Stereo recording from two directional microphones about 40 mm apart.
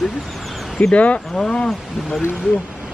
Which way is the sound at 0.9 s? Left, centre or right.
Left.